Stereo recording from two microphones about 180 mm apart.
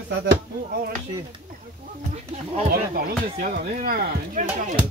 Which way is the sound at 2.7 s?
55° right (ahead or behind).